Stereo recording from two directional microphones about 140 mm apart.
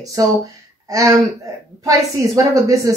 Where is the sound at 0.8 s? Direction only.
25° right (ahead or behind).